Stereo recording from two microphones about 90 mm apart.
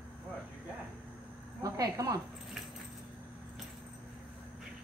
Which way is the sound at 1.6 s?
40° right (ahead or behind).